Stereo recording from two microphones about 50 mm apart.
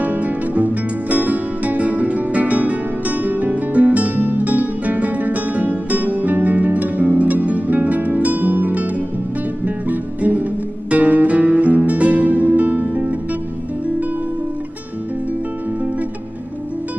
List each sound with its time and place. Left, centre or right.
0.0 s music: right